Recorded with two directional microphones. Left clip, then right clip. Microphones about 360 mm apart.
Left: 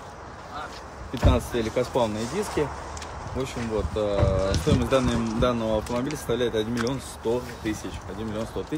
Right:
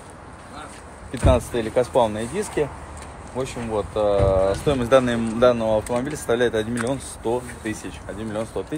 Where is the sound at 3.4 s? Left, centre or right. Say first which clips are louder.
Right 4 dB; centre.